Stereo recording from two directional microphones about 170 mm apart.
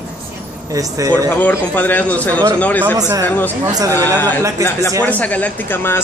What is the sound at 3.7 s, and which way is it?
Speech, 20° right (ahead or behind).